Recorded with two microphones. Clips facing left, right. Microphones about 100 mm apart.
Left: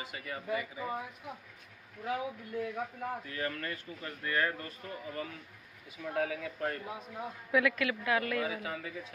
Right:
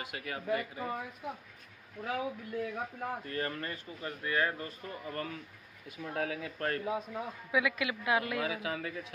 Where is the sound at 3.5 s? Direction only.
25° right (ahead or behind).